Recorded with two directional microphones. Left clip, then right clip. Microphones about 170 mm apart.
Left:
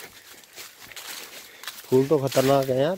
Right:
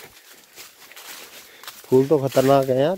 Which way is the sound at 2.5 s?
55° right (ahead or behind).